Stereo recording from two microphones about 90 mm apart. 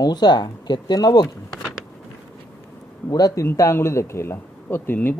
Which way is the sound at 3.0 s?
40° left (ahead or behind).